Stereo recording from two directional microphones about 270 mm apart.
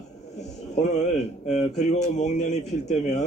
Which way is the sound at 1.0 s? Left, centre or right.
Left.